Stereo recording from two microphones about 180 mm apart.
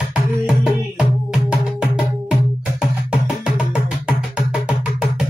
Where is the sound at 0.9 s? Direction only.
5° right (ahead or behind).